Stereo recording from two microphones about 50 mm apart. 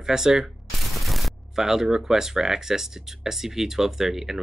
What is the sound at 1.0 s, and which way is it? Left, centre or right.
Speech, centre.